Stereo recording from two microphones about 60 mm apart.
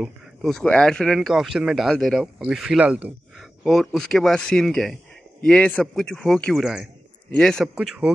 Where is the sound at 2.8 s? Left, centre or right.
Right.